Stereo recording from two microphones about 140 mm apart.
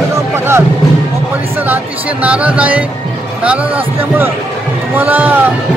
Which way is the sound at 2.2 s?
10° right (ahead or behind).